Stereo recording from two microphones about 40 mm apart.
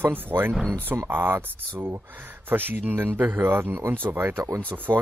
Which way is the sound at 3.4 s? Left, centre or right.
Right.